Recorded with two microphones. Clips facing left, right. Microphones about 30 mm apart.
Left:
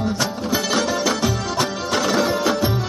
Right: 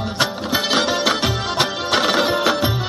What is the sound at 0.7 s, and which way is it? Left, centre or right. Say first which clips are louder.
Music: right 3 dB; right.